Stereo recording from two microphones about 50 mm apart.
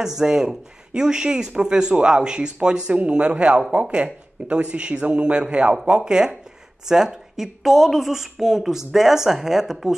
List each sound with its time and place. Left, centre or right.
0.0 s a man's voice: centre